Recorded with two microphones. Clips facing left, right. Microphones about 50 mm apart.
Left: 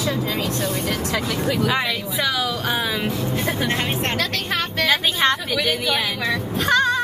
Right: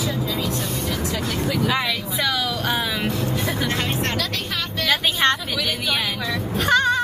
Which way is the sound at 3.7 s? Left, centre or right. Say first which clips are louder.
Left 1 dB; centre.